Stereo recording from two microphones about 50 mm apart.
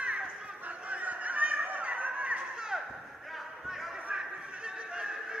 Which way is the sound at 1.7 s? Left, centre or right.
Right.